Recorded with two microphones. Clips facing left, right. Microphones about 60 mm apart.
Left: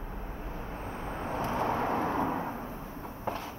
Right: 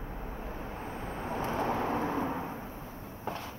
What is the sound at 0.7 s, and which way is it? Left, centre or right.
Vehicle, centre.